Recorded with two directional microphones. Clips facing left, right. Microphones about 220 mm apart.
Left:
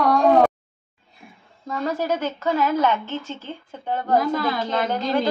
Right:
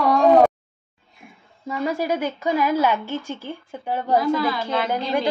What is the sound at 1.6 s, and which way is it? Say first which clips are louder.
A woman's voice: right 1 dB; 10° right (ahead or behind).